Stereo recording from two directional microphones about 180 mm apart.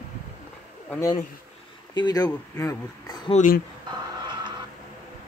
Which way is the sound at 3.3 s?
45° left (ahead or behind).